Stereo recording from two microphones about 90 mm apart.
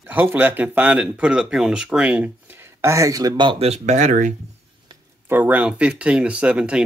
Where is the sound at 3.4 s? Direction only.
65° right (ahead or behind).